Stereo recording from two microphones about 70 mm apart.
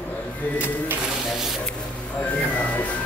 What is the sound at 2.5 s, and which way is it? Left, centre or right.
Music, centre.